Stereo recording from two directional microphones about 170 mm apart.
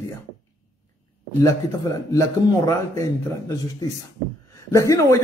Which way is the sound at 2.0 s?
20° left (ahead or behind).